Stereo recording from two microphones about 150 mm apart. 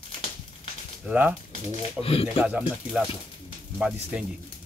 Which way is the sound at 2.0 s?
40° left (ahead or behind).